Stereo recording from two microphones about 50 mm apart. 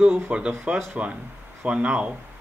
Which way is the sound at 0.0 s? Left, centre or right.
Right.